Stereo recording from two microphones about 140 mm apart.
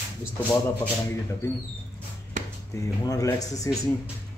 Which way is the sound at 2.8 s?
25° left (ahead or behind).